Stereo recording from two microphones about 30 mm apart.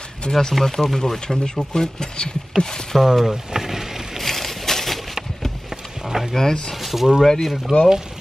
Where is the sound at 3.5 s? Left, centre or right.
Centre.